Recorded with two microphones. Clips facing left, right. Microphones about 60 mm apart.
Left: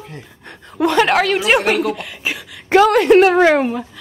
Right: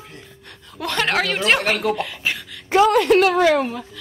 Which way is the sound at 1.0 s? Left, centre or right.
Centre.